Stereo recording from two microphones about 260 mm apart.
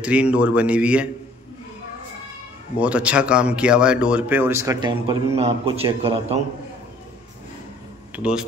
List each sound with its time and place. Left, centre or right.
0.0 s speech: centre
2.8 s speech: centre; by 6.4 s right
8.2 s speech: centre